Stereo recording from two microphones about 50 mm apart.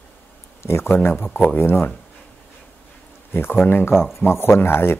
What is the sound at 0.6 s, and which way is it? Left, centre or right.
Speech, left.